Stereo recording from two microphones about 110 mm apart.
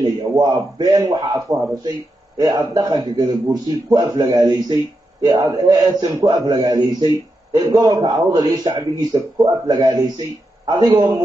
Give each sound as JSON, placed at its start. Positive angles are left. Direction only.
{"t": 0.0, "sound": "a man's voice", "side_deg": -30}